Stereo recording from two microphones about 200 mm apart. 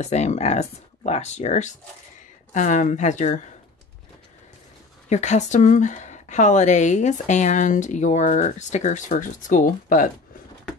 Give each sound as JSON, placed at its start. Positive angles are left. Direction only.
{"t": 0.0, "sound": "speech", "side_deg": 35}
{"t": 5.1, "sound": "speech", "side_deg": 35}